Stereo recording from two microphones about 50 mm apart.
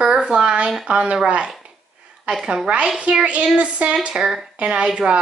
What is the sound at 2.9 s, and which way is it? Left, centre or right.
A woman's voice, right.